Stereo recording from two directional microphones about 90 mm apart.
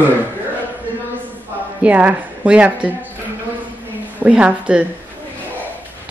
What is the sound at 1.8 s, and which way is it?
Speech, 15° right (ahead or behind).